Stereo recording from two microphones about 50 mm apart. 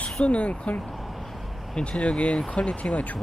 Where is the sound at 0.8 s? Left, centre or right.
Centre.